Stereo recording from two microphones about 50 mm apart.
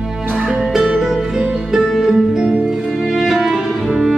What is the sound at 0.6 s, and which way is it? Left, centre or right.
Music, centre.